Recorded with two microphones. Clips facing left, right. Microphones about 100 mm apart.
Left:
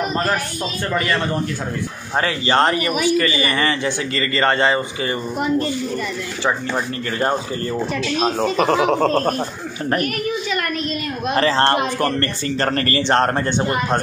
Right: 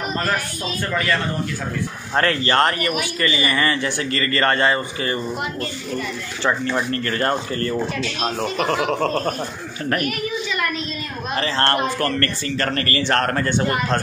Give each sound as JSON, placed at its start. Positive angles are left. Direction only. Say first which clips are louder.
{"t": 2.1, "sound": "a man's voice", "louder": "even", "side_deg": 15}
{"t": 6.4, "sound": "speech", "louder": "right 1 dB", "side_deg": 10}
{"t": 8.2, "sound": "a man's voice", "louder": "left 5 dB", "side_deg": 30}
{"t": 11.3, "sound": "a man's voice", "louder": "left 4 dB", "side_deg": 40}